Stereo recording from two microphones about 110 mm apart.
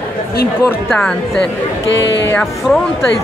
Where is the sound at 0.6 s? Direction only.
10° left (ahead or behind).